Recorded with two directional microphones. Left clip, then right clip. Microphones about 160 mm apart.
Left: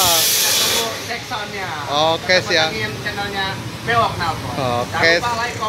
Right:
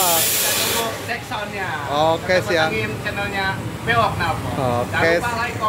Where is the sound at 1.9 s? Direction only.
15° right (ahead or behind).